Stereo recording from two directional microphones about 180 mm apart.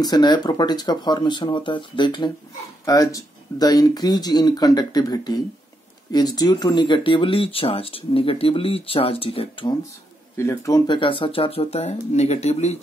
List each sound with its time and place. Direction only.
0.0 s speech: 20° left (ahead or behind)
10.3 s speech: 15° left (ahead or behind); by 12.7 s 35° left (ahead or behind)